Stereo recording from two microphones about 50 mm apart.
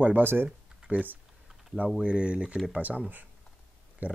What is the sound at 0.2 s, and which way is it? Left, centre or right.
Speech, right.